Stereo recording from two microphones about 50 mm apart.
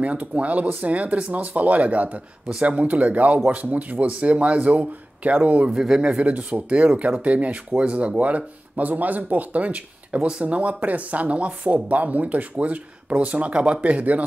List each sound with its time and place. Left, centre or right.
0.0 s speech: right
5.7 s speech: centre
6.2 s speech: right